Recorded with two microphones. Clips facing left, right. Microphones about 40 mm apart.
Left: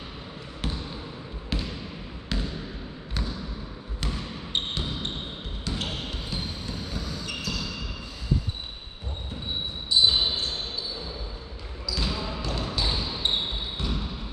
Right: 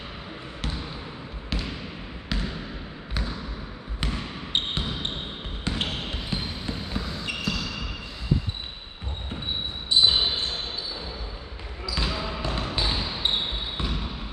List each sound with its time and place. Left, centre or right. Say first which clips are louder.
1.5 s trickle: even; centre
2.3 s basketball bounce: right 1 dB; centre
4.0 s basketball bounce: right 2 dB; right
9.8 s basketball bounce: right 1 dB; right
11.8 s basketball bounce: right 1 dB; right